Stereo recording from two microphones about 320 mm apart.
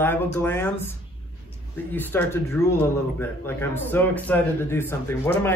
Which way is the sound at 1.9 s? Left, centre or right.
Centre.